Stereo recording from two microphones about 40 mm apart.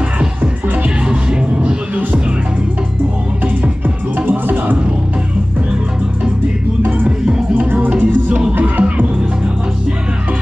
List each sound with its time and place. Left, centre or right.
4.3 s music: right
7.5 s music: right
8.5 s music: right